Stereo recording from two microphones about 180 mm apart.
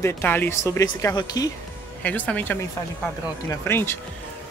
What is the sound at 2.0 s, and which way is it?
Speech, 10° left (ahead or behind).